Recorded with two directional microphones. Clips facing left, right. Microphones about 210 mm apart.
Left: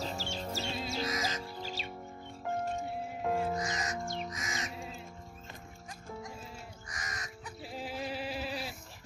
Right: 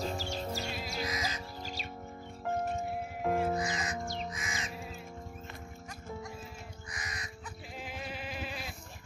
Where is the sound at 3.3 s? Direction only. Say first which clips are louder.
Right 2 dB; 20° right (ahead or behind).